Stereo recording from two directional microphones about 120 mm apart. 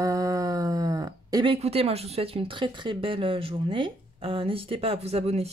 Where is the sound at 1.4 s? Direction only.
55° right (ahead or behind).